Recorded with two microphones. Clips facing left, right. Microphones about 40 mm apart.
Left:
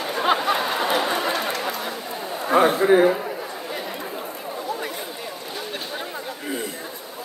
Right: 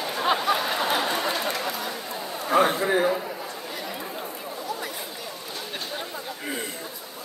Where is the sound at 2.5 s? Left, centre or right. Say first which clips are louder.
Left 5 dB; centre.